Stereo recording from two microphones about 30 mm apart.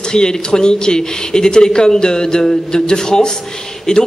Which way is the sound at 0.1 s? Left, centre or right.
Left.